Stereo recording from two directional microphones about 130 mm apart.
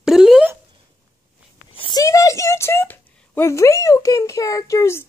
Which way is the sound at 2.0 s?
25° left (ahead or behind).